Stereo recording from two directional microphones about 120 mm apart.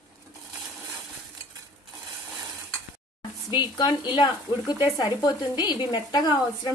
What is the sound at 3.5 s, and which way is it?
A woman's voice, 35° left (ahead or behind).